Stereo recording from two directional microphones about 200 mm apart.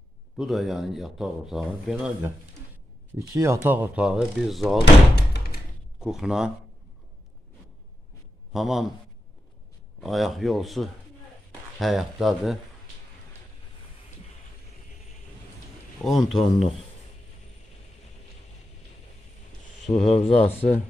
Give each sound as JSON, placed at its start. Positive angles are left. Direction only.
{"t": 0.4, "sound": "speech", "side_deg": 0}
{"t": 3.2, "sound": "speech", "side_deg": -15}
{"t": 5.1, "sound": "a sound", "side_deg": 55}
{"t": 5.9, "sound": "speech", "side_deg": -5}
{"t": 8.5, "sound": "speech", "side_deg": 0}
{"t": 9.9, "sound": "speech", "side_deg": 0}
{"t": 16.0, "sound": "speech", "side_deg": 0}
{"t": 20.1, "sound": "speech", "side_deg": 30}